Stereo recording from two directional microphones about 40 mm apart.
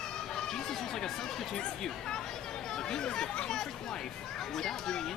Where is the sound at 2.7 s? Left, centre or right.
Centre.